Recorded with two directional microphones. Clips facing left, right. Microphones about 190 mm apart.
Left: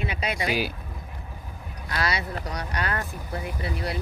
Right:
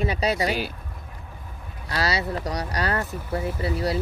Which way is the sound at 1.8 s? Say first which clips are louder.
Right 3 dB; 35° right (ahead or behind).